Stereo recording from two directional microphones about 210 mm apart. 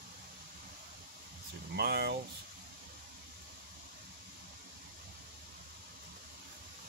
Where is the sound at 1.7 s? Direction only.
50° right (ahead or behind).